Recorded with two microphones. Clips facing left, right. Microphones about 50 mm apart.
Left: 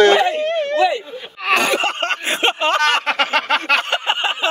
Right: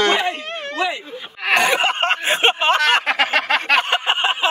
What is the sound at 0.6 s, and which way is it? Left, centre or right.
Speech, centre.